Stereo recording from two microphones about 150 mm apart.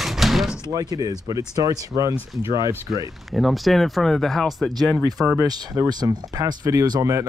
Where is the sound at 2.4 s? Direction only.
30° left (ahead or behind).